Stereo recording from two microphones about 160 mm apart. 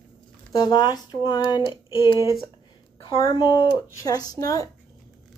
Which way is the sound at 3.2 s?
30° left (ahead or behind).